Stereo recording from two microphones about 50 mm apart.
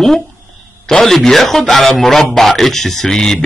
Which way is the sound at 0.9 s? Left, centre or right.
Centre.